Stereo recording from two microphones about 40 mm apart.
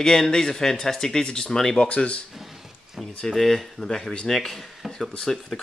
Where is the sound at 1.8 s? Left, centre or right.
Left.